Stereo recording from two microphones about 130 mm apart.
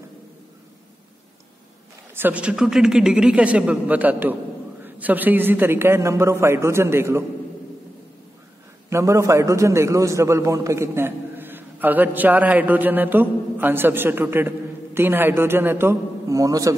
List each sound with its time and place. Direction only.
2.1 s a man's voice: 10° right (ahead or behind)
8.9 s a man's voice: 20° right (ahead or behind)